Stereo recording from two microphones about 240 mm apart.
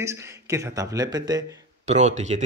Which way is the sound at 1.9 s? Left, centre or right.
Right.